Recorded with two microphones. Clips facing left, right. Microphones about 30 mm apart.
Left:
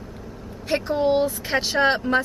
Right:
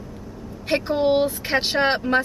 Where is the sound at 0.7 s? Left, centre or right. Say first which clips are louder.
Right 1 dB; right.